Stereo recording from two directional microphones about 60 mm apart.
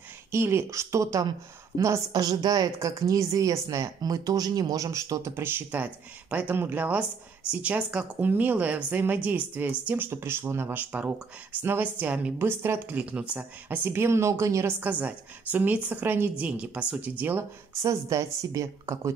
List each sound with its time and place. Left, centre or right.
0.3 s speech: right
2.1 s a woman's voice: right
2.8 s a woman's voice: right
10.7 s a woman's voice: right
12.4 s speech: right
12.7 s a woman's voice: right
13.7 s speech: right
14.8 s a woman's voice: right
17.4 s speech: right